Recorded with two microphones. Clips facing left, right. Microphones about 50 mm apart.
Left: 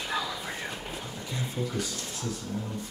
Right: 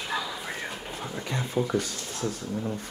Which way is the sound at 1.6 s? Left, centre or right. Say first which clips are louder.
Right 7 dB; right.